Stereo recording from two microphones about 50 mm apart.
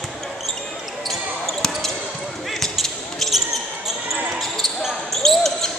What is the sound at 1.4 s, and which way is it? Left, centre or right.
Basketball bounce, centre.